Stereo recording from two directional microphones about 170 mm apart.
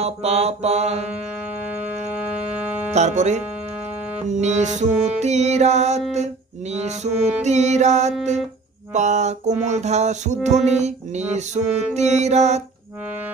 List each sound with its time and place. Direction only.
0.0 s music: 40° right (ahead or behind)
2.9 s speech: 45° right (ahead or behind)
4.3 s music: 45° right (ahead or behind)